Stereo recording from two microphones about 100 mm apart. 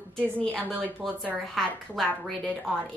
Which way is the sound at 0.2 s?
10° left (ahead or behind).